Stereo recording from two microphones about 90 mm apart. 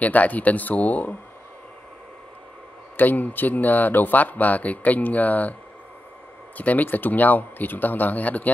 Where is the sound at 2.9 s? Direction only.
20° left (ahead or behind).